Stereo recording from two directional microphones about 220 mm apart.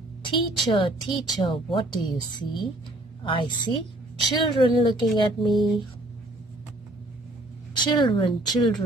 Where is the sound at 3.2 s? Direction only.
20° left (ahead or behind).